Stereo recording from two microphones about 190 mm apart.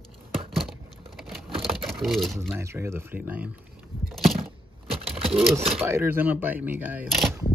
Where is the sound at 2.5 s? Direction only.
15° right (ahead or behind).